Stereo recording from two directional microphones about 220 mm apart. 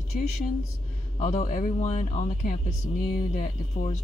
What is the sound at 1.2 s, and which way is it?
Speech, 35° left (ahead or behind).